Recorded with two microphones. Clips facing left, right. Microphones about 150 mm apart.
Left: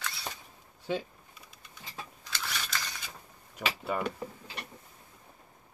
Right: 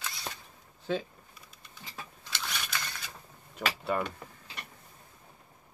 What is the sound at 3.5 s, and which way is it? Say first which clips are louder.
Speech: right 2 dB; 5° left (ahead or behind).